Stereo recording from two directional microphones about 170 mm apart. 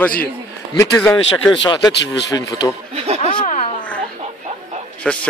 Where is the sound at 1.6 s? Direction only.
25° left (ahead or behind).